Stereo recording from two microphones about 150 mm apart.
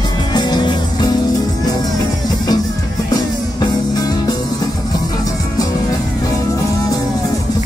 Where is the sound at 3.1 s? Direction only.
25° left (ahead or behind).